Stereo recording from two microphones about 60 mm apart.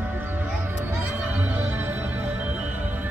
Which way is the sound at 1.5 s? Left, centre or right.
Right.